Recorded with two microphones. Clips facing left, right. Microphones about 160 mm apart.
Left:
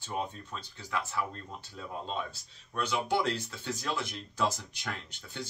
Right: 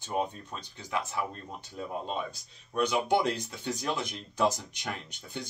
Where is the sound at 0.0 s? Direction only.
15° right (ahead or behind).